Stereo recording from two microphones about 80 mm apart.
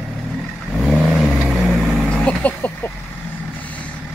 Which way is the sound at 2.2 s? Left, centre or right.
Centre.